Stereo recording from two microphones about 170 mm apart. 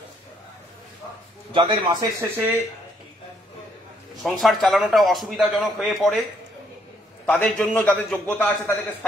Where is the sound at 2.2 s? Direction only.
10° right (ahead or behind).